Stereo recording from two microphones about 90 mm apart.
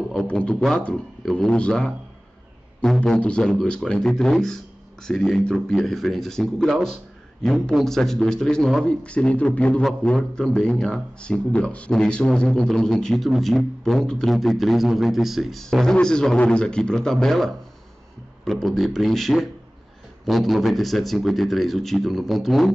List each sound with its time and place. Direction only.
0.3 s a man's voice: 10° left (ahead or behind)